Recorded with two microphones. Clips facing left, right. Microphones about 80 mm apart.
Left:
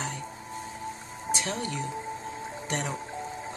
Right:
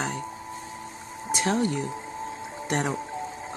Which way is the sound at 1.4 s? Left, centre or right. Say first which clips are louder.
Right 7 dB; right.